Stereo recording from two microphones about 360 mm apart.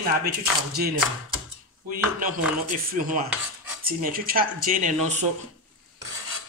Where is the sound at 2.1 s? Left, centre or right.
Right.